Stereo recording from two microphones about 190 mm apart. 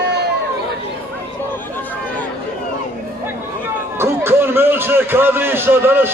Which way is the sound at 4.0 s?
10° right (ahead or behind).